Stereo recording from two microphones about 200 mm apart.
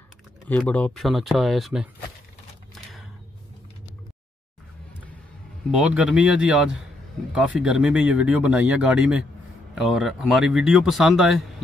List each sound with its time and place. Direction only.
0.5 s speech: 5° left (ahead or behind)
5.8 s speech: 5° right (ahead or behind)